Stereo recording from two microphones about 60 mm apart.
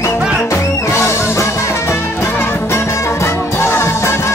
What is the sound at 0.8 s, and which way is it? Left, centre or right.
Music, left.